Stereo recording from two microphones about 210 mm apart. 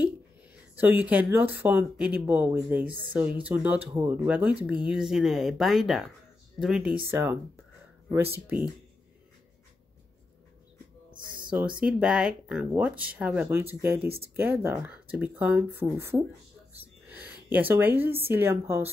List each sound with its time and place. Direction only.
0.7 s speech: 10° right (ahead or behind)
11.1 s a sound: 20° right (ahead or behind)
11.5 s a woman's voice: 5° right (ahead or behind)